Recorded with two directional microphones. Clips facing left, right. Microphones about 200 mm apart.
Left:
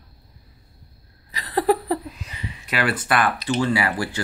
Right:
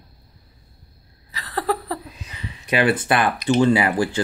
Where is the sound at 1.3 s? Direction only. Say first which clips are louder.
Left 4 dB; 15° left (ahead or behind).